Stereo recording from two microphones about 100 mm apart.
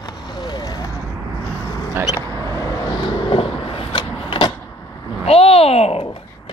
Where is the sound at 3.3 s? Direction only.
65° left (ahead or behind).